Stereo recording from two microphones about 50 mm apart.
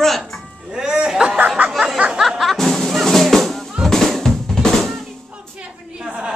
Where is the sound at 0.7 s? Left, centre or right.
Centre.